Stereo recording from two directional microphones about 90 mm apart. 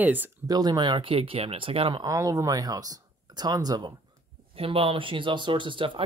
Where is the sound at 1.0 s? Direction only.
90° right.